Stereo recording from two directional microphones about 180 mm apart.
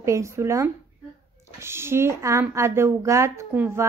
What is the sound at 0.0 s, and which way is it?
A woman's voice, 15° right (ahead or behind).